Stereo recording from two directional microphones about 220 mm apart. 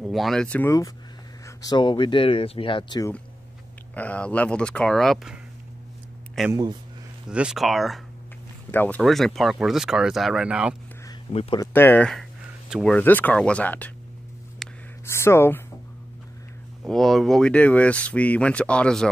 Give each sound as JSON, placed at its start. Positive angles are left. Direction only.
{"t": 0.0, "sound": "speech", "side_deg": 0}
{"t": 3.9, "sound": "speech", "side_deg": 5}
{"t": 6.5, "sound": "speech", "side_deg": -20}
{"t": 7.2, "sound": "speech", "side_deg": -5}
{"t": 11.3, "sound": "speech", "side_deg": 30}
{"t": 11.6, "sound": "speech", "side_deg": 10}
{"t": 14.6, "sound": "whispering", "side_deg": 0}
{"t": 15.0, "sound": "speech", "side_deg": 10}
{"t": 16.8, "sound": "speech", "side_deg": 0}